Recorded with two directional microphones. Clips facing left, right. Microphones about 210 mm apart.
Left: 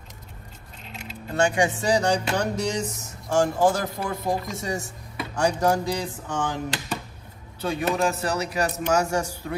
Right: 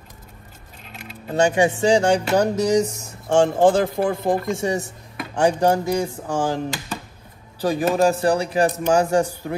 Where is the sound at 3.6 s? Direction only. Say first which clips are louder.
Right 6 dB; 55° right (ahead or behind).